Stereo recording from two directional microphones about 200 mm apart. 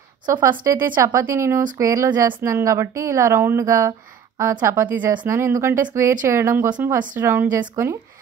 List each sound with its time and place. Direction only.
0.3 s a woman's voice: 15° right (ahead or behind)